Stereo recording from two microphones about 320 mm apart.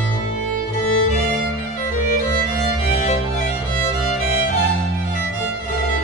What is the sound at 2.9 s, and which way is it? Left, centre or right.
Music, left.